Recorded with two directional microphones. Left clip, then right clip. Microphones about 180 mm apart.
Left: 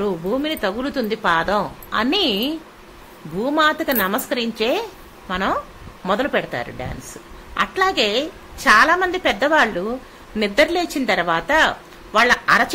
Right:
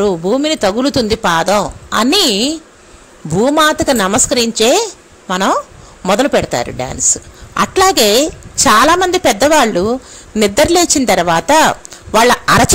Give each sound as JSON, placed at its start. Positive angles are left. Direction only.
{"t": 0.0, "sound": "a woman's voice", "side_deg": -50}